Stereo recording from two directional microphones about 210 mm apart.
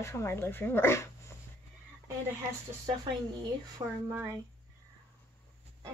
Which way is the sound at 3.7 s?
15° right (ahead or behind).